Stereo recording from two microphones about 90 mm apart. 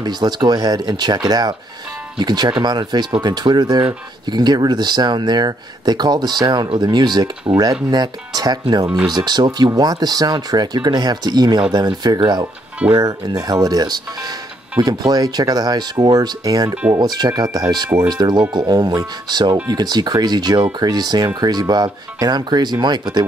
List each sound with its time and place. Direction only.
0.0 s speech: 50° right (ahead or behind)